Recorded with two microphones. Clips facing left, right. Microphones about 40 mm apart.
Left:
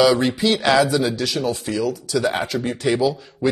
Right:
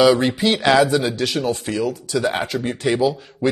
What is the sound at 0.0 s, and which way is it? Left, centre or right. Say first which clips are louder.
A man's voice: right 1 dB; right.